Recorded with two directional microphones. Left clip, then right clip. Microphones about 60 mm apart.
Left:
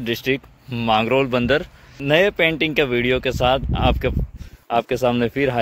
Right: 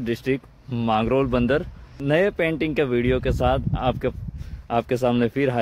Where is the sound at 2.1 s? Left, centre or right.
Centre.